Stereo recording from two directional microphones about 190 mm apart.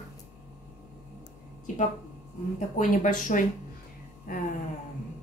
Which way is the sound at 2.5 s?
40° left (ahead or behind).